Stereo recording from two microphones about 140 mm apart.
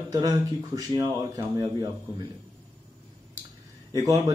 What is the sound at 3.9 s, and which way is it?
Speech, 25° right (ahead or behind).